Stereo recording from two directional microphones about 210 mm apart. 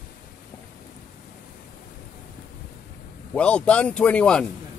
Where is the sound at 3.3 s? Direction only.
5° left (ahead or behind).